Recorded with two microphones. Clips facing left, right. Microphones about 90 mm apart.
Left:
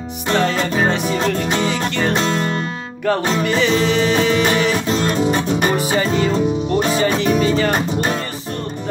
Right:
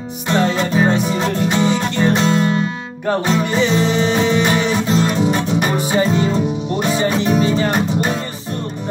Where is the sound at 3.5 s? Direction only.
30° right (ahead or behind).